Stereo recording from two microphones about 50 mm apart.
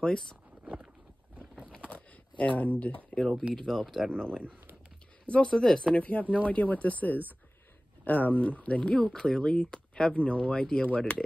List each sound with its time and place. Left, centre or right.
0.0 s speech: centre
1.9 s shuffling cards: left
3.1 s speech: centre
4.4 s speech: right
5.2 s speech: left
5.5 s speech: centre
5.9 s speech: left